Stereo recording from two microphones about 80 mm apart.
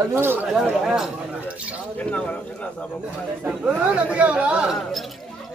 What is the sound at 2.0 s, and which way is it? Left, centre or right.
Speech, centre.